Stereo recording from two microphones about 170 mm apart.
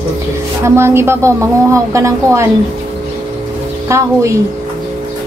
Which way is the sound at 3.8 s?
15° right (ahead or behind).